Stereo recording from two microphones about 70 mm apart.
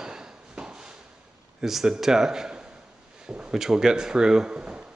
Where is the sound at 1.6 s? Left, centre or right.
Centre.